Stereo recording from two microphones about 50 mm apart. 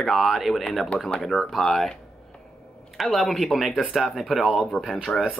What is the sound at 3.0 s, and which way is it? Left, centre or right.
Speech, centre.